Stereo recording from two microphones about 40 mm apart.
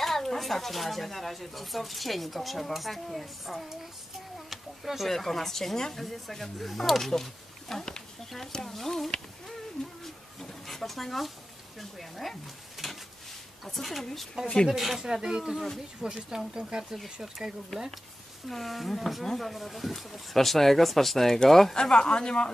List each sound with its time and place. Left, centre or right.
0.0 s speech: centre
4.5 s insect: centre
5.0 s speech: centre
10.0 s a sound: centre
12.0 s speech: centre
14.4 s speech: centre
15.5 s speech: centre
16.0 s speech: centre
18.5 s speech: centre
21.7 s speech: centre